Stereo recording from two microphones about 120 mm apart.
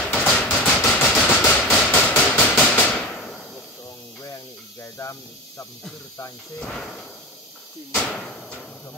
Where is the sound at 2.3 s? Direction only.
15° left (ahead or behind).